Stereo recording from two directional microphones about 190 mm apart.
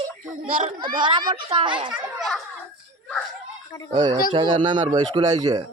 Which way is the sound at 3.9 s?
25° right (ahead or behind).